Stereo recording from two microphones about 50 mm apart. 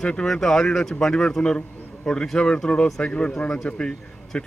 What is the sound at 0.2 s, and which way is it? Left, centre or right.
A man's voice, centre.